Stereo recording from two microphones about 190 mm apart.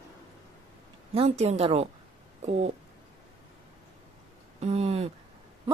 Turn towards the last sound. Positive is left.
turn(degrees=-35)  # may be behind; listen again after turning